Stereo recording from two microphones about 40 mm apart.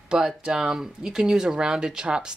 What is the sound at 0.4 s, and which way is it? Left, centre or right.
Speech, centre.